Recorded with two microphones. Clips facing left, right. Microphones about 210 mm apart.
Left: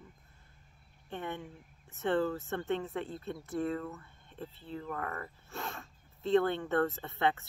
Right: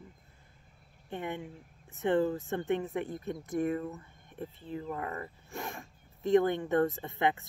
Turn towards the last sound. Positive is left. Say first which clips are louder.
# right 1 dB
turn(degrees=-15)  # may be behind; listen again after turning